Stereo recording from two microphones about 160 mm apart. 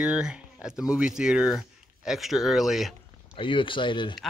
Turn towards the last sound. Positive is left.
turn(degrees=30)  # may be behind; listen again after turning